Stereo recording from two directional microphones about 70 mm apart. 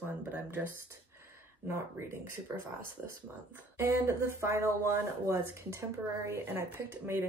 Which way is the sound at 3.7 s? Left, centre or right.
Right.